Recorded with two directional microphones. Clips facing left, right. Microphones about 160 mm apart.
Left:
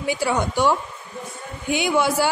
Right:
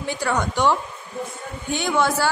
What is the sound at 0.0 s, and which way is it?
A woman's voice, 10° left (ahead or behind).